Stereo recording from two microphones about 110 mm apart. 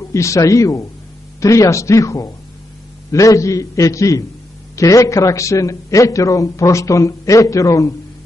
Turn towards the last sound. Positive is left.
turn(degrees=30)  # may be behind; listen again after turning